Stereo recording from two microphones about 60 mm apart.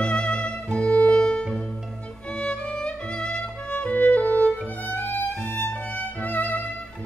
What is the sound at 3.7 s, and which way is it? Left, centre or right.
Music, left.